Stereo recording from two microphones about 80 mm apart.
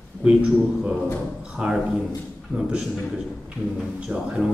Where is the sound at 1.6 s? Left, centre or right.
Centre.